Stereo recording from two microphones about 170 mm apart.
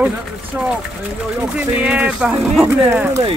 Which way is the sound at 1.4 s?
10° right (ahead or behind).